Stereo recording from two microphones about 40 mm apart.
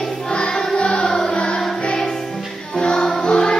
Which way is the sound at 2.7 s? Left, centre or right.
Centre.